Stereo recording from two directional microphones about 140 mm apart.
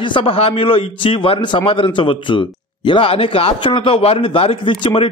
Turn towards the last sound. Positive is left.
turn(degrees=40)  # may be behind; listen again after turning